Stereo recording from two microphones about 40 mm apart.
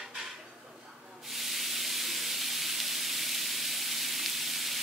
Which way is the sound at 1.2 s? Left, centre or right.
Centre.